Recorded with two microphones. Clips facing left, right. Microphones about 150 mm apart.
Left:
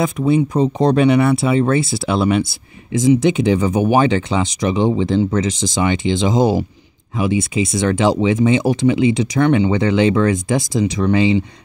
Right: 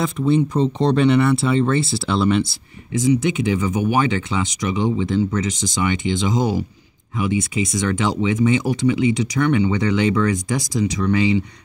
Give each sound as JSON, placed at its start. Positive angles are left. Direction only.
{"t": 0.2, "sound": "speech", "side_deg": 10}
{"t": 3.1, "sound": "speech", "side_deg": 30}